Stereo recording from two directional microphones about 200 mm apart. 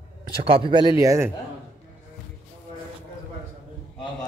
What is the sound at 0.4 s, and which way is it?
Speech, 25° right (ahead or behind).